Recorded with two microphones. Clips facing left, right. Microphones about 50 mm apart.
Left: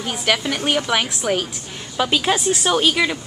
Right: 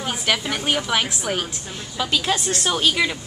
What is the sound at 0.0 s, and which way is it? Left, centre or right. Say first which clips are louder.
A woman's voice: left 2 dB; centre.